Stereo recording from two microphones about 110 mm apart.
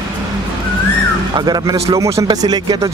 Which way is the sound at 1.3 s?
35° right (ahead or behind).